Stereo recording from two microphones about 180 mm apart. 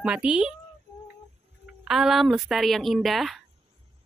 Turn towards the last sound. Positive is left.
turn(degrees=0)  # may be behind; listen again after turning